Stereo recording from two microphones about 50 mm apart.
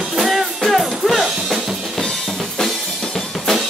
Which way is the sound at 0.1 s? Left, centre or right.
Centre.